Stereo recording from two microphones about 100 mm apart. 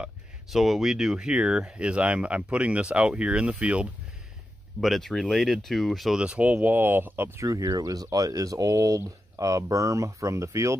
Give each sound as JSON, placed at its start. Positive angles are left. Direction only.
{"t": 0.0, "sound": "speech", "side_deg": -5}
{"t": 4.7, "sound": "speech", "side_deg": 0}
{"t": 6.2, "sound": "speech", "side_deg": -15}